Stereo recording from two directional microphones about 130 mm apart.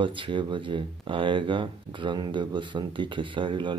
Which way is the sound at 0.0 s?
40° right (ahead or behind).